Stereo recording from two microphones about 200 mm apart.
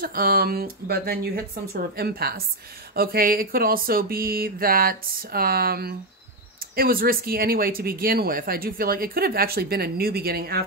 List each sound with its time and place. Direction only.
0.0 s speech: 45° right (ahead or behind)